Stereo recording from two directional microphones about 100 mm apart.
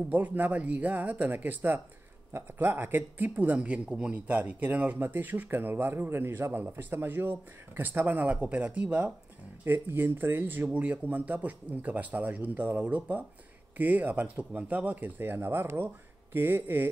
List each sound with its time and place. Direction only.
0.1 s speech: 15° right (ahead or behind)